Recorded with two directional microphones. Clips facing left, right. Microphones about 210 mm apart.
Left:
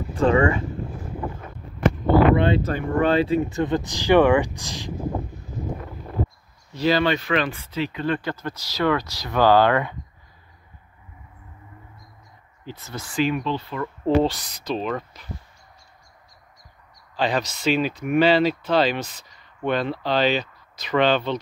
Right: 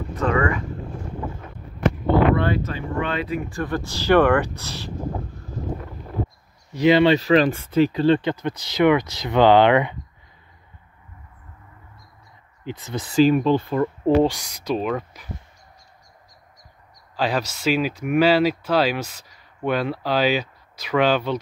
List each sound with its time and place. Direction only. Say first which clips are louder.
0.1 s speech: left 3 dB; 30° left (ahead or behind)
2.3 s speech: left 2 dB; 20° left (ahead or behind)
2.7 s speech: left 6 dB; 35° left (ahead or behind); by 4.9 s 15° left (ahead or behind)
6.7 s speech: right 5 dB; 20° right (ahead or behind); by 7.9 s 50° right (ahead or behind)
7.9 s speech: right 7 dB; 30° right (ahead or behind)
12.6 s speech: right 5 dB; 20° right (ahead or behind)
13.1 s speech: right 7 dB; 40° right (ahead or behind)
14.0 s speech: even; 15° right (ahead or behind)
17.2 s speech: even; 5° right (ahead or behind)